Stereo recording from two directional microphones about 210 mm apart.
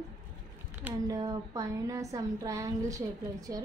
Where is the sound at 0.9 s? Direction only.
15° right (ahead or behind).